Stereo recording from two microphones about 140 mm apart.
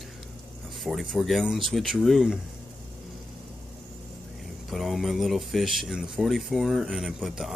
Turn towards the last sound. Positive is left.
turn(degrees=0)  # may be behind; listen again after turning